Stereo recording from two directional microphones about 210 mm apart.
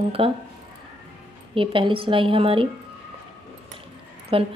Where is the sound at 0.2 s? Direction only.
25° right (ahead or behind).